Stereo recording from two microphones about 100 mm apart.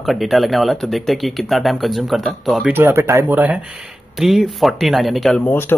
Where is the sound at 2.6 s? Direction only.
20° right (ahead or behind).